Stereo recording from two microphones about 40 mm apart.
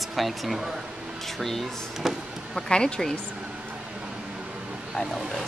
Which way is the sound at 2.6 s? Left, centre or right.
Left.